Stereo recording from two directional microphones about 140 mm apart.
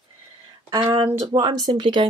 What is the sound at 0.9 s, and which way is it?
Speech, 30° right (ahead or behind).